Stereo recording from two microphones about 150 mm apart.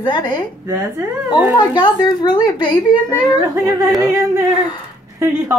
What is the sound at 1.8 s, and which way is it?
A woman's voice, 30° left (ahead or behind).